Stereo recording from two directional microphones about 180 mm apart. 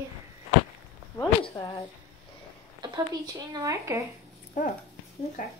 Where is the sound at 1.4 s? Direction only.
20° left (ahead or behind).